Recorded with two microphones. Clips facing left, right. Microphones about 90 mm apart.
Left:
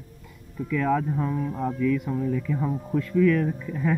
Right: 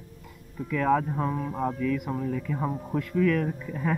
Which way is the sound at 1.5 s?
5° right (ahead or behind).